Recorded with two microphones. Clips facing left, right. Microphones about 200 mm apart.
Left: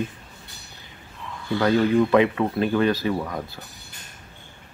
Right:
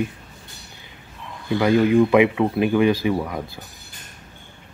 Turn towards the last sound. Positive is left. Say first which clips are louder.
# right 3 dB
turn(degrees=-10)  # may be behind; listen again after turning